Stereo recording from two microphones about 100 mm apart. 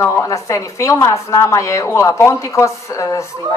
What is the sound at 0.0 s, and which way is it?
Speech, 20° left (ahead or behind).